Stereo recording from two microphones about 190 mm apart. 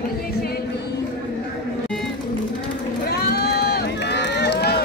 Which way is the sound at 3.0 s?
55° left (ahead or behind).